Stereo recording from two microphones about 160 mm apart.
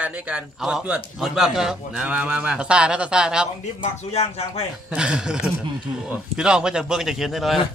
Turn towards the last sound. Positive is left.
turn(degrees=0)  # may be behind; listen again after turning